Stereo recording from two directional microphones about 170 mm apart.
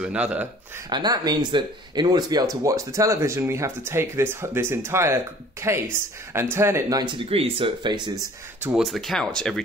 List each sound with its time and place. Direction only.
0.0 s speech: 5° right (ahead or behind)
0.8 s speech: 25° right (ahead or behind)
8.5 s speech: 10° right (ahead or behind)
8.8 s speech: centre (ahead or behind)